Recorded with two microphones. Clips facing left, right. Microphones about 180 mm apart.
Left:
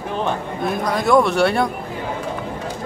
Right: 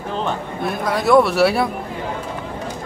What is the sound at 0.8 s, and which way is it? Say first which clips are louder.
Speech: right 2 dB; centre (ahead or behind).